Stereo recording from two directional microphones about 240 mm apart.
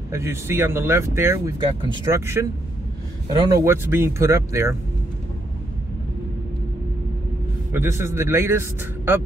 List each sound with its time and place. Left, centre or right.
0.1 s speech: centre
7.7 s speech: centre